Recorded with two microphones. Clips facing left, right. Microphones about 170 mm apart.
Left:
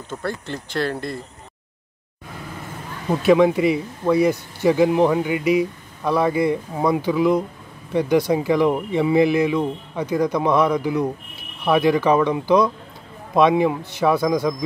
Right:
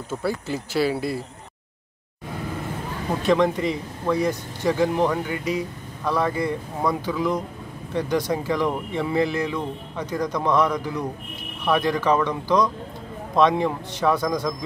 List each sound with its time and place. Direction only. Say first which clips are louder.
0.1 s speech: right 2 dB; 5° right (ahead or behind)
3.2 s speech: left 5 dB; 10° left (ahead or behind)